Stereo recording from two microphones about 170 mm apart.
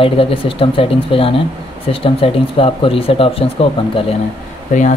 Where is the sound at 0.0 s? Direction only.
35° left (ahead or behind).